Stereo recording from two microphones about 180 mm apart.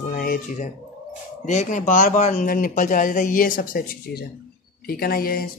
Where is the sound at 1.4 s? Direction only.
45° left (ahead or behind).